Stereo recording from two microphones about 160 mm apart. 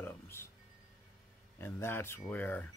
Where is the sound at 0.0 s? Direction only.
15° left (ahead or behind).